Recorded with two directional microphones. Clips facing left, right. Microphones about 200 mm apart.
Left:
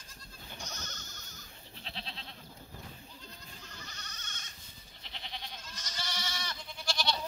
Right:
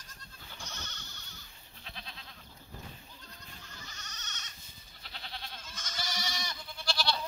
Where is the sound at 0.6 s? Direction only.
40° left (ahead or behind).